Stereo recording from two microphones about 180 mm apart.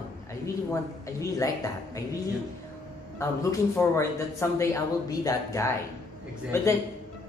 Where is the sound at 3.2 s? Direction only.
15° left (ahead or behind).